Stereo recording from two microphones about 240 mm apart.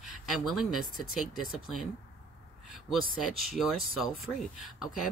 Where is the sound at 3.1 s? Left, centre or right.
Centre.